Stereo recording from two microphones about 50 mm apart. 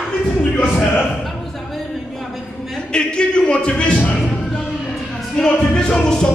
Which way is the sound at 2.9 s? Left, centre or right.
Centre.